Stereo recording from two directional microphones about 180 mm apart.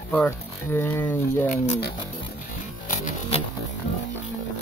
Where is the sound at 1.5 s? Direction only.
40° left (ahead or behind).